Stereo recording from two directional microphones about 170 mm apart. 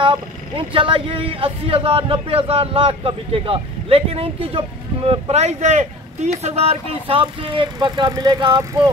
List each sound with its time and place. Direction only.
0.0 s speech: 30° right (ahead or behind)